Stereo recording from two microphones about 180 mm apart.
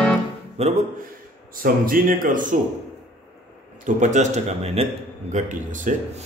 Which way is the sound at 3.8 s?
40° right (ahead or behind).